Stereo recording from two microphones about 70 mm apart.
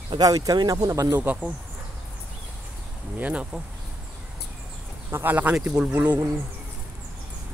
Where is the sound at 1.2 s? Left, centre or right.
Right.